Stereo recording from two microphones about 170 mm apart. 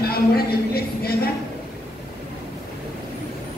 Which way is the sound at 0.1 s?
65° left (ahead or behind).